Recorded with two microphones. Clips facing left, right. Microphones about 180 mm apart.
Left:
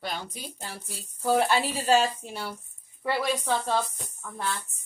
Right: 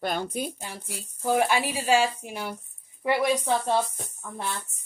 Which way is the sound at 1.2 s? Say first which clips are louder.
Even; 10° right (ahead or behind).